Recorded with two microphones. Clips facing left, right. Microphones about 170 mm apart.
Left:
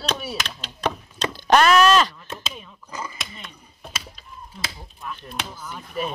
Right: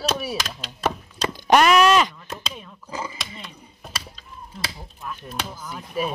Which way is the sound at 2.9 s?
30° right (ahead or behind).